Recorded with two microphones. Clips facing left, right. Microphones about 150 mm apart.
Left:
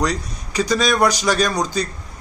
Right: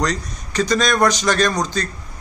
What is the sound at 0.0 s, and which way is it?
A man's voice, 5° left (ahead or behind).